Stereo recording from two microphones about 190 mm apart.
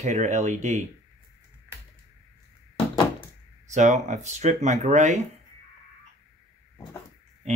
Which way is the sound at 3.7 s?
40° right (ahead or behind).